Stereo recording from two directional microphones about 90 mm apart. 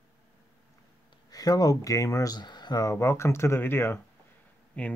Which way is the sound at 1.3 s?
45° left (ahead or behind).